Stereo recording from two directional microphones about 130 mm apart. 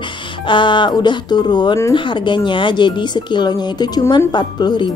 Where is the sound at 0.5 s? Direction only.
40° left (ahead or behind).